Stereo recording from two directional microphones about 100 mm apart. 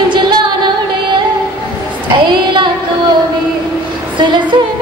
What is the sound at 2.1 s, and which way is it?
Child singing, 50° right (ahead or behind).